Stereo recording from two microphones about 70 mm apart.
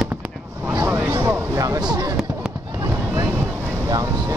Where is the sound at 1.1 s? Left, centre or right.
Right.